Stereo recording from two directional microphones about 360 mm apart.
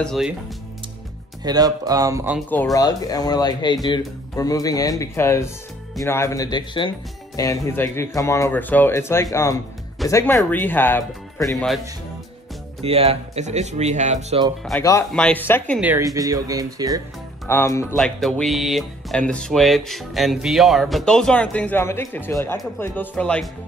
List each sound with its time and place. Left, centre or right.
0.0 s speech: centre
1.4 s speech: centre
12.8 s speech: centre
14.6 s speech: centre
17.5 s speech: centre